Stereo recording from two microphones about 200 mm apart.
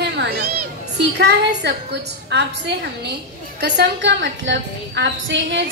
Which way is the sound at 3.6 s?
60° right (ahead or behind).